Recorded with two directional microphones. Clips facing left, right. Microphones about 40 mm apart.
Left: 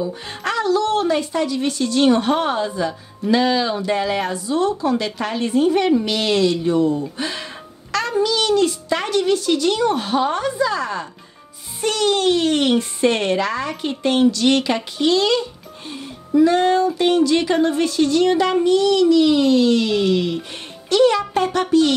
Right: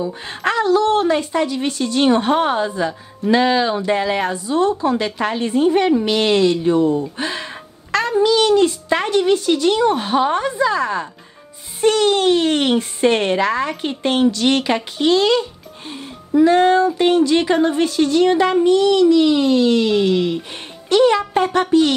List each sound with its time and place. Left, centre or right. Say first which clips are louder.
0.3 s a child's voice: right 4 dB; right
7.3 s music: right 2 dB; right
8.2 s a child's voice: right 4 dB; right